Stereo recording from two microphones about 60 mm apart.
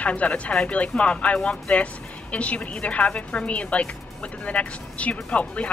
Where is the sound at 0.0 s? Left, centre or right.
Left.